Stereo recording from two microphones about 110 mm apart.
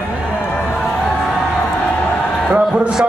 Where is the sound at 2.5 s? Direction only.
10° right (ahead or behind).